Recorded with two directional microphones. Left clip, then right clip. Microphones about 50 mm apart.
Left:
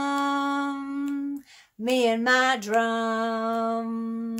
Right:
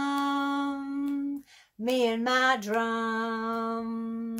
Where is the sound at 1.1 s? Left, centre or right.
Left.